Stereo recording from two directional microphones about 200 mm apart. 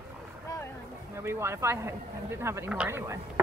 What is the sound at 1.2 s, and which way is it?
Speech, 15° right (ahead or behind).